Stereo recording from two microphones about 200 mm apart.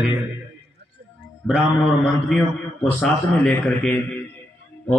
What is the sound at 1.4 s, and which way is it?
Speech, 5° left (ahead or behind).